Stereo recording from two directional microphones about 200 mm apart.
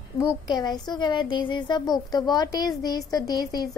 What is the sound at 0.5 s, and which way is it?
A woman's voice, 20° left (ahead or behind).